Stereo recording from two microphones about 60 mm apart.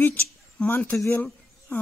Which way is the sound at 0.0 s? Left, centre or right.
Left.